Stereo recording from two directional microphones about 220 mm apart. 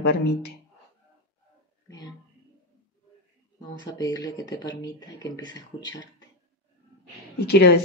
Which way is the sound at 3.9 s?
15° left (ahead or behind).